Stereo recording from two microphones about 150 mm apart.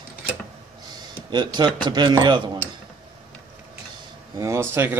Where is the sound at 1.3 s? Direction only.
30° right (ahead or behind).